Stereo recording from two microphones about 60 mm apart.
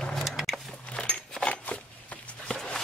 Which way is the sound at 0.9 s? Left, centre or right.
Centre.